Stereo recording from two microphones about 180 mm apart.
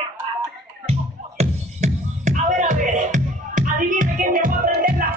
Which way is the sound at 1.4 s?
40° right (ahead or behind).